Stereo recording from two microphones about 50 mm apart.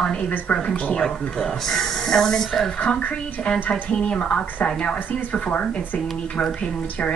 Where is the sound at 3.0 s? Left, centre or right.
Left.